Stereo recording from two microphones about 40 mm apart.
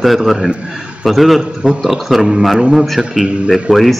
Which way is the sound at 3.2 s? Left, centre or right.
Right.